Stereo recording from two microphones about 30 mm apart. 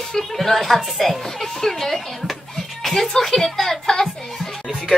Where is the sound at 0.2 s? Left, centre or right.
Centre.